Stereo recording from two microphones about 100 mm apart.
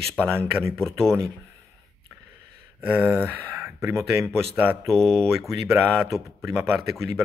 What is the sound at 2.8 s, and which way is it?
Speech, 15° right (ahead or behind).